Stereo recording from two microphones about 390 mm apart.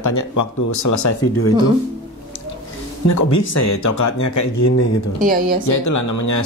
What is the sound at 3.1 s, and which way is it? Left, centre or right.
Speech, left.